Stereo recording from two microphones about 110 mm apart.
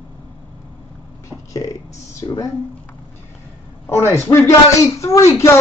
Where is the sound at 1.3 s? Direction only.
30° left (ahead or behind).